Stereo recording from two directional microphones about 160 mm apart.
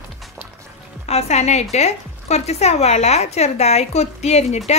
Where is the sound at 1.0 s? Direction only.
40° left (ahead or behind).